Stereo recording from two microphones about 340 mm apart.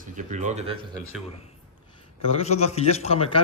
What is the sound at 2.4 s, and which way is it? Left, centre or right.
Speech, centre.